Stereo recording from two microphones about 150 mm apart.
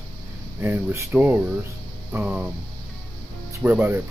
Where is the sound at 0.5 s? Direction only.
15° right (ahead or behind).